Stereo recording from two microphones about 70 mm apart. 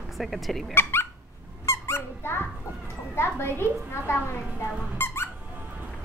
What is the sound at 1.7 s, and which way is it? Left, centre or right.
Squeak, left.